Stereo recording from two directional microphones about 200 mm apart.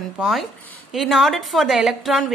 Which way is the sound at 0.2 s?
Centre (ahead or behind).